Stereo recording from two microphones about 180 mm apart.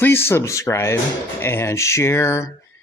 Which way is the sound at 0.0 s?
10° left (ahead or behind).